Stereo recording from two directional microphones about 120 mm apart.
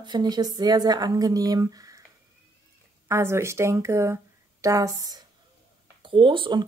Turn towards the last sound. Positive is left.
turn(degrees=-40)  # may be behind; listen again after turning